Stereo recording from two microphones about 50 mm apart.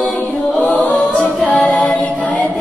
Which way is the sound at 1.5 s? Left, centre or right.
Left.